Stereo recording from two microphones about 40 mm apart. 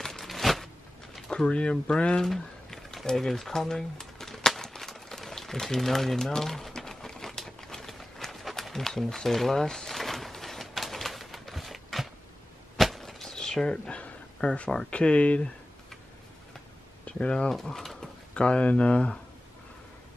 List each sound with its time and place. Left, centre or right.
0.0 s a sound: centre
1.3 s speech: left
2.2 s a sound: centre
6.3 s crumpling: centre
12.7 s a sound: centre; by 14.0 s left
14.4 s speech: left
17.2 s speech: left
17.6 s pigeon: centre
18.3 s speech: left